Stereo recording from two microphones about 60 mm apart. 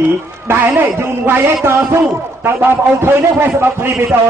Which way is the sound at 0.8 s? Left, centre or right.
Right.